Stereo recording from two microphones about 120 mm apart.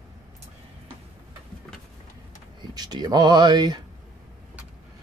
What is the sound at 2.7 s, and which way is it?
Speech, 35° right (ahead or behind).